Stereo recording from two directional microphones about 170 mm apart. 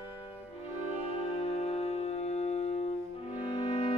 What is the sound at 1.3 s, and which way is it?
Music, 35° left (ahead or behind).